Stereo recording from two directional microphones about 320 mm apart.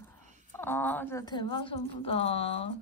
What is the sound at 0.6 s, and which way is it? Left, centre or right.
A woman's voice, centre.